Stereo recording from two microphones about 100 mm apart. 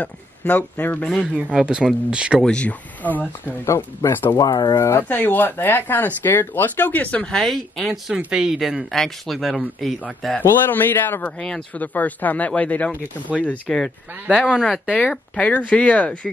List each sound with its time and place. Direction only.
0.0 s speech: 15° left (ahead or behind)
1.1 s speech: 5° right (ahead or behind)
2.4 s speech: 10° left (ahead or behind)
3.6 s speech: 30° left (ahead or behind)
4.4 s speech: 40° left (ahead or behind)
4.7 s speech: 25° left (ahead or behind); by 9.9 s centre (ahead or behind)
10.4 s speech: 20° left (ahead or behind)
11.3 s speech: 10° left (ahead or behind)
14.2 s speech: 5° right (ahead or behind)
14.6 s speech: 10° left (ahead or behind)